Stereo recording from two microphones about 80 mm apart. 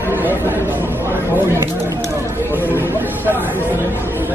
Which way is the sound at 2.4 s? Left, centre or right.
Right.